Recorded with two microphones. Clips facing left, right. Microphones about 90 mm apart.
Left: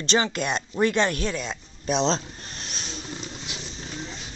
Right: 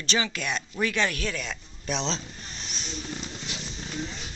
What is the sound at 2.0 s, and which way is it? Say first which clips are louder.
Speech: left 7 dB; 40° left (ahead or behind).